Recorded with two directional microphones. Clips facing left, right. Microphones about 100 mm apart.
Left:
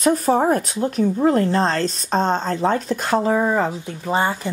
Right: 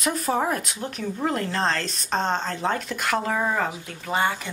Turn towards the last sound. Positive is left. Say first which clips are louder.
# left 4 dB
turn(degrees=30)  # may be behind; listen again after turning